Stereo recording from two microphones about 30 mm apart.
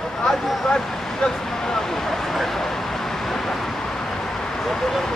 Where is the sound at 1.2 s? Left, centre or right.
Centre.